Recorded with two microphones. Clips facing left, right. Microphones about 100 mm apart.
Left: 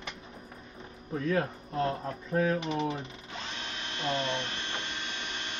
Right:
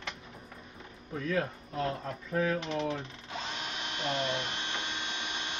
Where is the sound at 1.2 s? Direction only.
30° left (ahead or behind).